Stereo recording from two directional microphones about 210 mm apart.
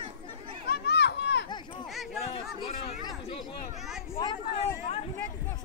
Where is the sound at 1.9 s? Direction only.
Centre (ahead or behind).